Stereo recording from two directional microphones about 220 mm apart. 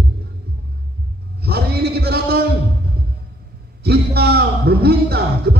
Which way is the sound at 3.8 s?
45° right (ahead or behind).